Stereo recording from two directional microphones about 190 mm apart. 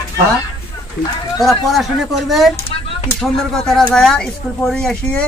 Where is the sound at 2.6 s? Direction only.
30° left (ahead or behind).